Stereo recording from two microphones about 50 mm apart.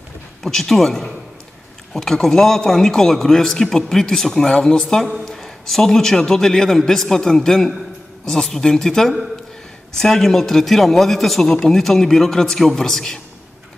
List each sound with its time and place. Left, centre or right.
0.4 s a man's voice: centre
5.0 s speech: centre
5.3 s a man's voice: centre